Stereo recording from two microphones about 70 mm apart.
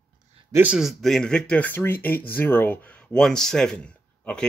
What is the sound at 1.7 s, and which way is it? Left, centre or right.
Speech, left.